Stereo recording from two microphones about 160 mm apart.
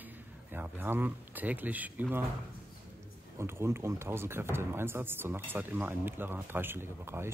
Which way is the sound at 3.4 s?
15° right (ahead or behind).